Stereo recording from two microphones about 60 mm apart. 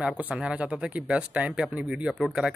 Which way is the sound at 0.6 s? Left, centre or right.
Centre.